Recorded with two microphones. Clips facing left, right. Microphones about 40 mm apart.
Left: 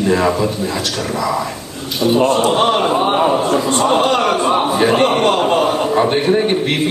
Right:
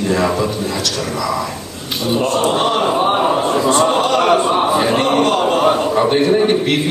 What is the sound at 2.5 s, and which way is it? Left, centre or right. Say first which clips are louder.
Speech: left 2 dB; left.